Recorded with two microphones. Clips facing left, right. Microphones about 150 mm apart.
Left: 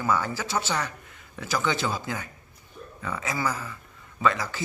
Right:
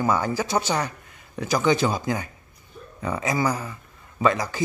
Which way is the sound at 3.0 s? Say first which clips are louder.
Right 6 dB; 35° right (ahead or behind).